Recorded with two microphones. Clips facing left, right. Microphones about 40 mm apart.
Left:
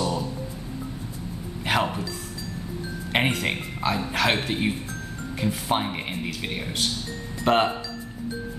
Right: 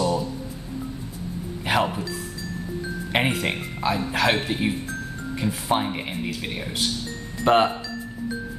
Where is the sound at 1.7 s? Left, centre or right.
Centre.